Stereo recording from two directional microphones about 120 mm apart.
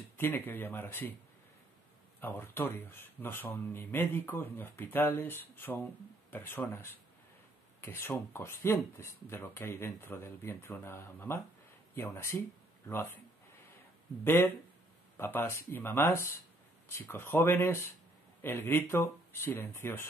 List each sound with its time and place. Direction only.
0.2 s speech: 15° left (ahead or behind)
2.1 s speech: 20° left (ahead or behind)
14.2 s speech: 20° left (ahead or behind)